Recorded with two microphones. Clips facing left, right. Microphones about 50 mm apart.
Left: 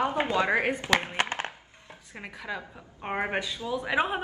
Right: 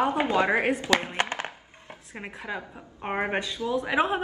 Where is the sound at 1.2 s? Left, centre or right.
Left.